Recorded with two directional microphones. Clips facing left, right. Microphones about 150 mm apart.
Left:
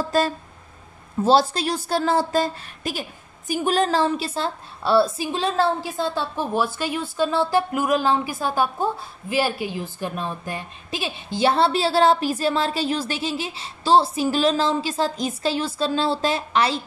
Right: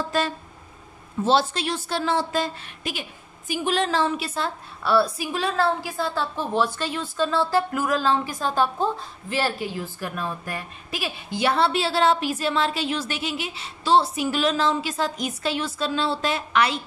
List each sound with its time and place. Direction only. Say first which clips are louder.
1.2 s a woman's voice: left 3 dB; 40° left (ahead or behind)